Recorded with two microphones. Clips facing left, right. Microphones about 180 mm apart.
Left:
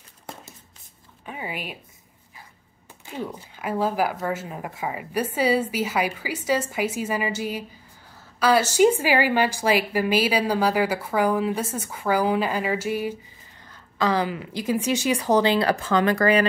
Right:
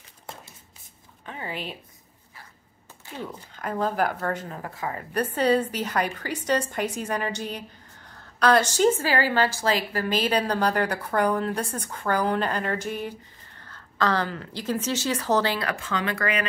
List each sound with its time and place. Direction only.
1.2 s speech: 10° left (ahead or behind)
3.5 s a woman's voice: 5° left (ahead or behind)
15.6 s speech: 40° left (ahead or behind)